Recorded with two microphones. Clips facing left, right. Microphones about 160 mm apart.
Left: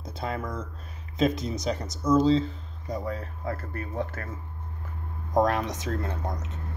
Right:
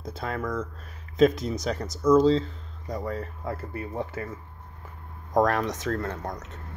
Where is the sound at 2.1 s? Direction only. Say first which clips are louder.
Even; centre (ahead or behind).